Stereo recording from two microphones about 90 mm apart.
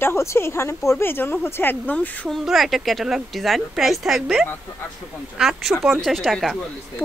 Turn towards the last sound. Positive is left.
turn(degrees=0)  # may be behind; listen again after turning